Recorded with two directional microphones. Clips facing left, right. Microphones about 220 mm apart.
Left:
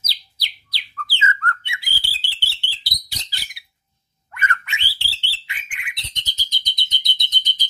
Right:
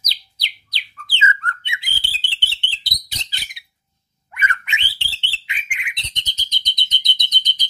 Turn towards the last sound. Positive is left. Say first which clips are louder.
# right 1 dB
turn(degrees=-20)  # may be behind; listen again after turning